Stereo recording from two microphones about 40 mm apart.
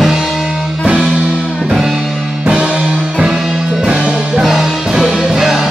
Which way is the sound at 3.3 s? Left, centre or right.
Centre.